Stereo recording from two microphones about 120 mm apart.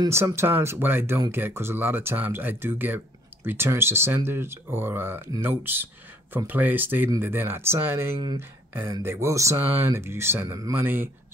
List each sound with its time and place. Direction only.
0.1 s speech: 20° right (ahead or behind)